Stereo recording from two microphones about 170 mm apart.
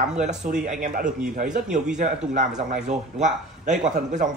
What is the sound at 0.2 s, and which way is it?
Speech, 45° right (ahead or behind).